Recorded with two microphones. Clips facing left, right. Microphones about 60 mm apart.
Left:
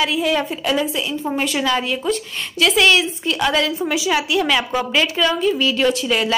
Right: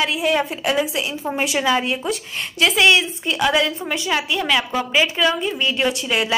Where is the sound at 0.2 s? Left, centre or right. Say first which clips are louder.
Even; centre.